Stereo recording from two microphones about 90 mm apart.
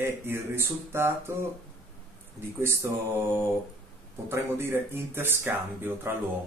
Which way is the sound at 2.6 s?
30° right (ahead or behind).